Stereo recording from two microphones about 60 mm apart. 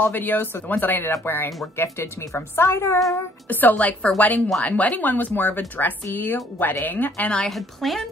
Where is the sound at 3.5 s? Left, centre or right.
Left.